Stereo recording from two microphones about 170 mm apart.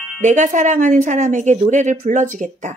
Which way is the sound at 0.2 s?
45° right (ahead or behind).